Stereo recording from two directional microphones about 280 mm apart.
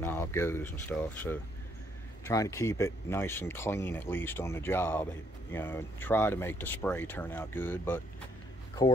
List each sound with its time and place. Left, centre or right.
0.0 s speech: centre